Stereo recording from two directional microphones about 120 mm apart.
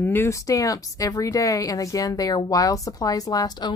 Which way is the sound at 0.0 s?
20° left (ahead or behind).